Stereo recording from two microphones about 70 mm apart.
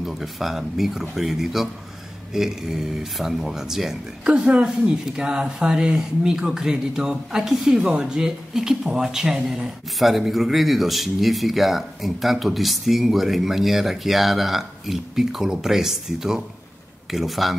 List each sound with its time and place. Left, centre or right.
0.0 s speech: centre